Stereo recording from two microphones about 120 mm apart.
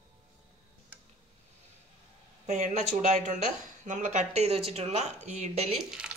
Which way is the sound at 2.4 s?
80° right.